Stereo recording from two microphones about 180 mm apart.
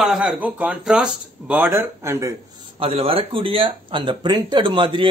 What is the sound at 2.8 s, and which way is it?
Speech, 35° right (ahead or behind).